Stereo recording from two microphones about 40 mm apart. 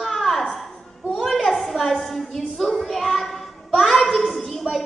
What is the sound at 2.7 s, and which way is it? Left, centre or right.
Child singing, centre.